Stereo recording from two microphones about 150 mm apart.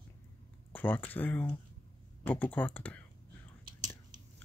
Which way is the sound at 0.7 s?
10° left (ahead or behind).